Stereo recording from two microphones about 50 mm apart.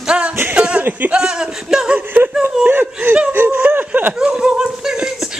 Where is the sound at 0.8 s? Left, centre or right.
Right.